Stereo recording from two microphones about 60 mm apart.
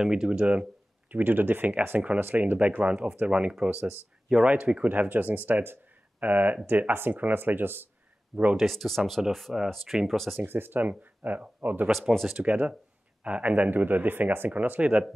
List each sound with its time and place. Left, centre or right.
0.0 s speech: centre
1.1 s speech: right
2.8 s speech: centre
4.8 s speech: right
8.5 s speech: centre
10.3 s speech: right
12.1 s speech: centre
12.4 s speech: right